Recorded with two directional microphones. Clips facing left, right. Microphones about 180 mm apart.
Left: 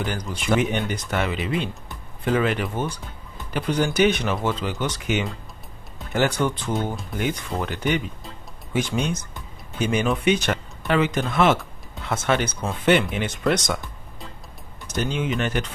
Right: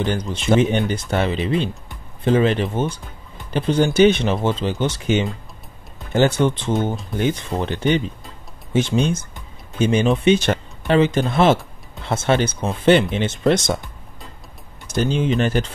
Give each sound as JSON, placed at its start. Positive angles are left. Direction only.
{"t": 0.0, "sound": "speech", "side_deg": -25}
{"t": 14.9, "sound": "speech", "side_deg": -30}